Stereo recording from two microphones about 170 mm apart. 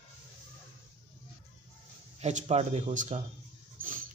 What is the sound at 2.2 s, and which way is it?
Speech, 40° right (ahead or behind).